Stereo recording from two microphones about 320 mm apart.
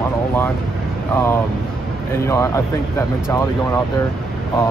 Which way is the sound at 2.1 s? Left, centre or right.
Centre.